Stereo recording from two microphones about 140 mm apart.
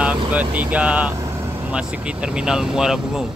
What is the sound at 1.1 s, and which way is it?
Vehicle, 25° right (ahead or behind).